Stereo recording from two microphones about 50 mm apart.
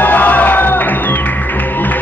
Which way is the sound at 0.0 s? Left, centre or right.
Left.